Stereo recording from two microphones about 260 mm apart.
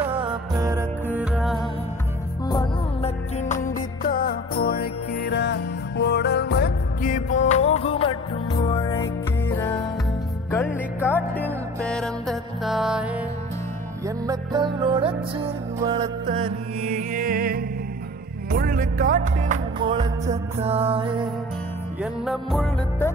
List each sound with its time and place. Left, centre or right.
0.0 s music: centre
2.4 s music: centre
14.0 s music: centre
22.0 s music: centre